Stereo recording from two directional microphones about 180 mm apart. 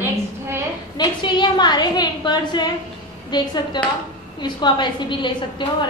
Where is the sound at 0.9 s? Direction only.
25° left (ahead or behind).